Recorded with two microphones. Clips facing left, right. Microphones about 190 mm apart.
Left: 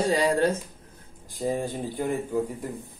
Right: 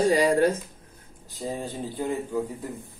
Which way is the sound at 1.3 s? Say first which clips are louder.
Left 4 dB; 15° left (ahead or behind).